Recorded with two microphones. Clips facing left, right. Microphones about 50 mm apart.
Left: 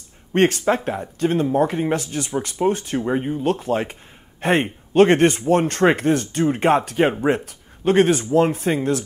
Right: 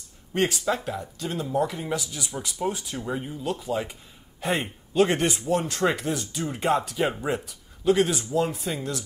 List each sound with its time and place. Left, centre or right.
0.3 s a man's voice: left